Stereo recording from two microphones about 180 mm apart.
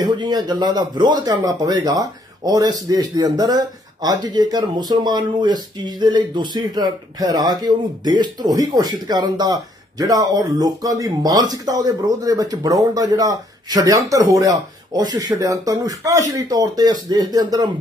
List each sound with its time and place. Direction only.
0.0 s speech: 25° right (ahead or behind)